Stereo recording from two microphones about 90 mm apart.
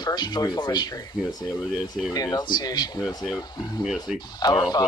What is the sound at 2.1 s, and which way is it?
Speech, 45° left (ahead or behind).